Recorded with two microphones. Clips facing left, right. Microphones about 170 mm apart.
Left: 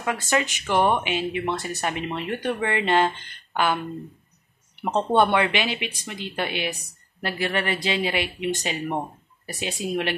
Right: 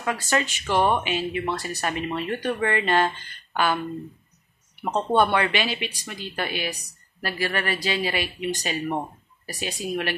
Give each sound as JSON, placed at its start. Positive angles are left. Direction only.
{"t": 0.0, "sound": "speech", "side_deg": 15}
{"t": 4.8, "sound": "speech", "side_deg": 20}